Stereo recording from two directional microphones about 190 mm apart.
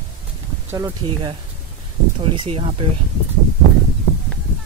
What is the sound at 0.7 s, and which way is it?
Speech, 15° right (ahead or behind).